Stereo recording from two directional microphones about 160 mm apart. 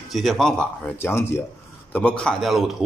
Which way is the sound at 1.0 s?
15° left (ahead or behind).